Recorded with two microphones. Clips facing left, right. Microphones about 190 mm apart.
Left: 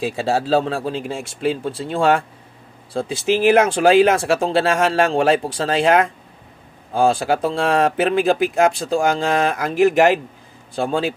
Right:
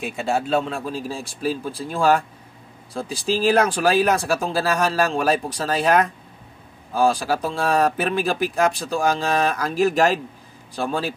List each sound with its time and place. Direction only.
0.0 s a man's voice: 30° left (ahead or behind)